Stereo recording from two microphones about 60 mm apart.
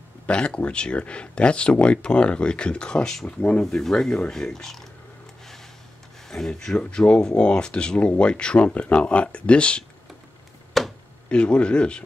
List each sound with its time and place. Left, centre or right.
0.3 s speech: centre
3.6 s speech: centre
6.2 s speech: centre
10.8 s a sound: centre
11.2 s speech: centre